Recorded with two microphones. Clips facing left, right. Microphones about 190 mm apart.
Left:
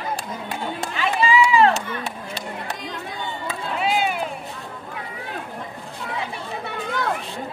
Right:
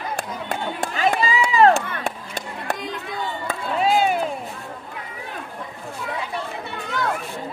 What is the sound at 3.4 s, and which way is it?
Chop, 40° right (ahead or behind).